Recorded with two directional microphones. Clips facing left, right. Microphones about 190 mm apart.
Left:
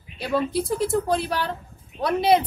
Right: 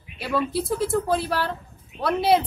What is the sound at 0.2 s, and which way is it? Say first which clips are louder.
Speech: left 1 dB; 5° right (ahead or behind).